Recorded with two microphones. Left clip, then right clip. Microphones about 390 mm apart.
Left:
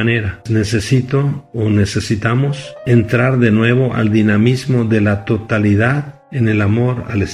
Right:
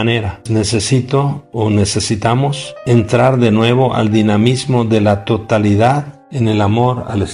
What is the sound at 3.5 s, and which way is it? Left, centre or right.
Speech, centre.